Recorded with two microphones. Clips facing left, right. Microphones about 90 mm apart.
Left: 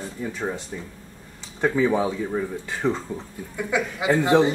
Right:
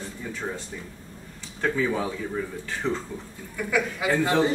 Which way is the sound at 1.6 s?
20° left (ahead or behind).